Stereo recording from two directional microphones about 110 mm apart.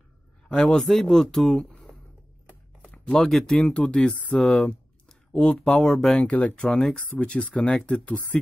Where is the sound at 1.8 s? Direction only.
Centre (ahead or behind).